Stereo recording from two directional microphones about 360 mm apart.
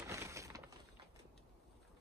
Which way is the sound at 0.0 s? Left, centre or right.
Centre.